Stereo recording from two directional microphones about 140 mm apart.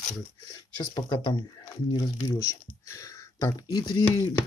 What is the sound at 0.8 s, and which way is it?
Speech, 35° left (ahead or behind).